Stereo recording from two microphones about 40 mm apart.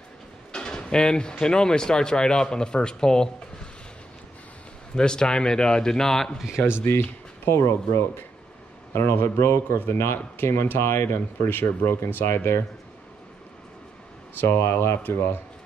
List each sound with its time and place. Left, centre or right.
0.5 s drawer open or close: centre
1.4 s a man's voice: centre
4.9 s speech: left
6.6 s speech: left
9.1 s speech: left
9.8 s speech: left
14.4 s speech: left